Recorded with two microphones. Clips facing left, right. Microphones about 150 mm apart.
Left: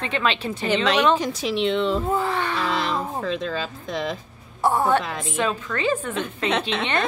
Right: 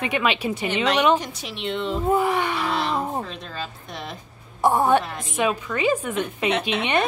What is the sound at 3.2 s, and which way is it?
Speech, 90° left.